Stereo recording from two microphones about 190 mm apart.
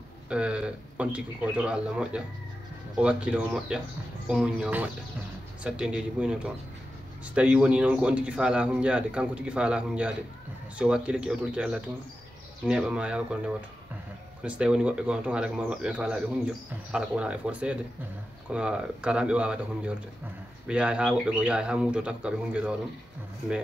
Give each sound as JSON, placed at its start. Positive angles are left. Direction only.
{"t": 0.3, "sound": "a man's voice", "side_deg": -5}